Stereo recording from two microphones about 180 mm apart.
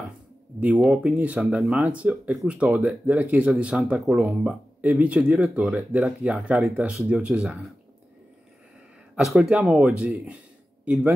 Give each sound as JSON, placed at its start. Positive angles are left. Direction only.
{"t": 0.6, "sound": "speech", "side_deg": -5}
{"t": 9.1, "sound": "speech", "side_deg": 0}